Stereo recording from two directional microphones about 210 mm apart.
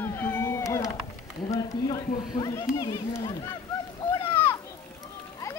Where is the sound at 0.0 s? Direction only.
10° left (ahead or behind).